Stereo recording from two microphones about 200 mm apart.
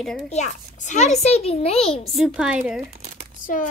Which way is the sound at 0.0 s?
Centre (ahead or behind).